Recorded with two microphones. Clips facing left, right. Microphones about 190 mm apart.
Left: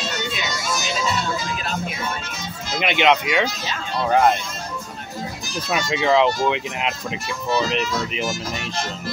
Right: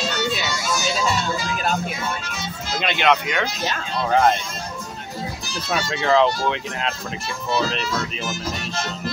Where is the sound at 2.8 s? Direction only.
20° left (ahead or behind).